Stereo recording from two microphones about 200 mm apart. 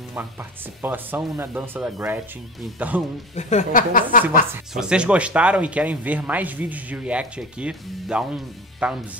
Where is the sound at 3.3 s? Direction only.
35° left (ahead or behind).